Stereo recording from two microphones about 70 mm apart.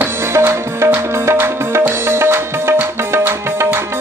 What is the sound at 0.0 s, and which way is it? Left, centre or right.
Music, right.